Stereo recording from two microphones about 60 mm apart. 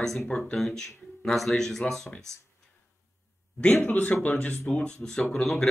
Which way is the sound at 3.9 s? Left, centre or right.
Left.